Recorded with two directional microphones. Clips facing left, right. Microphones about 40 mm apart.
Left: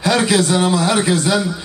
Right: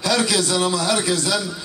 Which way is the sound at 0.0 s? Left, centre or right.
Left.